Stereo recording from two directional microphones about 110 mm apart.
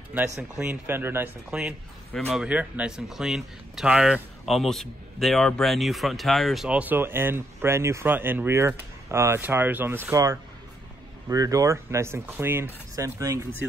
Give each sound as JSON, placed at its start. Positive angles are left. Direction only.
{"t": 0.4, "sound": "speech", "side_deg": -15}
{"t": 1.5, "sound": "a man's voice", "side_deg": -10}
{"t": 6.8, "sound": "speech", "side_deg": -20}
{"t": 11.2, "sound": "speech", "side_deg": -30}